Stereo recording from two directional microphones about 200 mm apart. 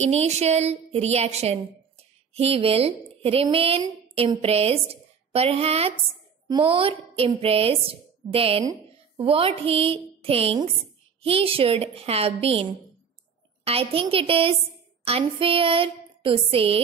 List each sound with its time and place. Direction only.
0.0 s a woman's voice: 35° right (ahead or behind)
13.7 s a woman's voice: 30° right (ahead or behind)